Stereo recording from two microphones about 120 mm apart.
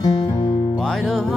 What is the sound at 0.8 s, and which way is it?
Music, 5° left (ahead or behind).